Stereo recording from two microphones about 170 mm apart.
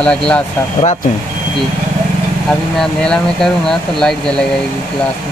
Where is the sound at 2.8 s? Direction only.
5° left (ahead or behind).